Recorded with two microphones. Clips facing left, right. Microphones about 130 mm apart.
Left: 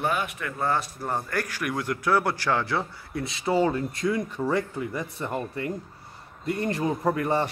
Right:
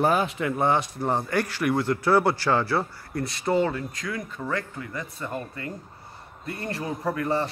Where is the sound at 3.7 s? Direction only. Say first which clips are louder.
Left 5 dB; 25° left (ahead or behind).